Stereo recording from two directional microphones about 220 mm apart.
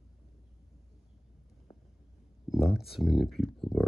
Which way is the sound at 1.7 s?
25° left (ahead or behind).